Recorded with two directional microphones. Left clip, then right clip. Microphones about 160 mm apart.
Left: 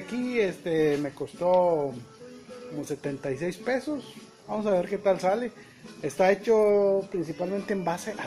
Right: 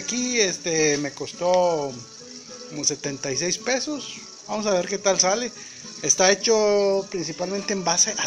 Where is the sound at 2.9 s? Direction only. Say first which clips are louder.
Right 6 dB; 25° right (ahead or behind).